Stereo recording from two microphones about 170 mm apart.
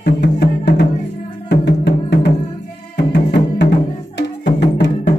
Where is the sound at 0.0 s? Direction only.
85° left.